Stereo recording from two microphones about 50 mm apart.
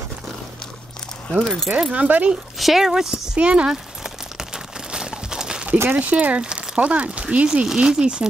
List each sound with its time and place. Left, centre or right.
1.4 s speech: centre
1.8 s speech: right
2.6 s speech: centre
3.3 s speech: right
4.9 s crumpling: centre
5.9 s speech: right